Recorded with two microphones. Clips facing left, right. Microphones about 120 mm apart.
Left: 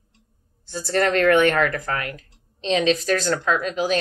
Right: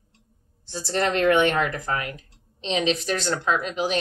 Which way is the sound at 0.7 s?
20° right (ahead or behind).